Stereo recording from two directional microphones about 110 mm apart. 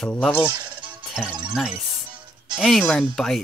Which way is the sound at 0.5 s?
40° right (ahead or behind).